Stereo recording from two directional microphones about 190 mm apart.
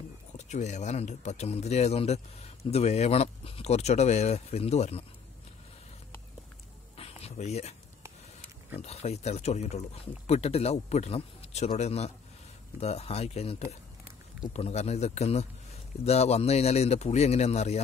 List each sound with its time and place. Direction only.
0.4 s speech: 35° left (ahead or behind)
7.0 s a sound: 30° left (ahead or behind)
8.7 s speech: 35° left (ahead or behind)